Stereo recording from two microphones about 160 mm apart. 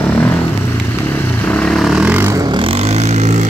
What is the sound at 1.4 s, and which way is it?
Vehicle, 10° left (ahead or behind).